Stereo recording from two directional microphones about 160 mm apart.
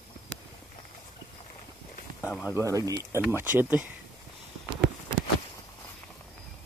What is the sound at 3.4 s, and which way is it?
Speech, 10° right (ahead or behind).